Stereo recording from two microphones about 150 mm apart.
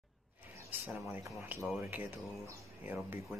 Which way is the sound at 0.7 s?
10° right (ahead or behind).